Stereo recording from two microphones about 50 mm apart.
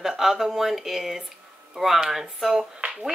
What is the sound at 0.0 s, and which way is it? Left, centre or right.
Speech, centre.